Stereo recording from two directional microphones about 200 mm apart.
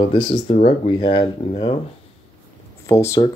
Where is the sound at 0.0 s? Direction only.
25° left (ahead or behind).